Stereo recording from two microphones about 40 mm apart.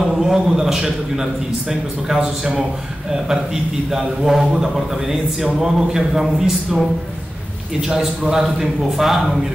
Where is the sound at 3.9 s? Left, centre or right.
Centre.